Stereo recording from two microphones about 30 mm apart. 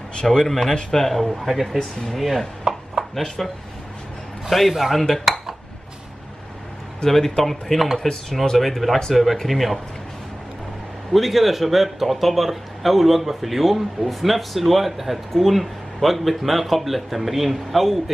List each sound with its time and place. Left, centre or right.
0.2 s speech: centre
1.8 s speech: centre
2.1 s chopping: centre
3.4 s speech: centre
4.5 s speech: centre
5.1 s dishes: centre
7.1 s speech: centre
11.1 s speech: centre